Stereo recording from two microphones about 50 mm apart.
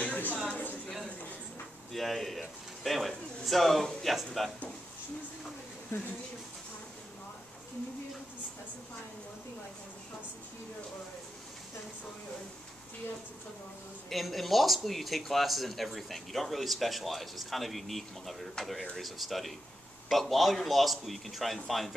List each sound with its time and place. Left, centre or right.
0.0 s a sound: left
1.9 s speech: centre
5.9 s speech: left
14.0 s speech: centre